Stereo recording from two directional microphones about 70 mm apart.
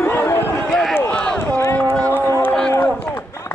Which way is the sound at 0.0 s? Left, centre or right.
Left.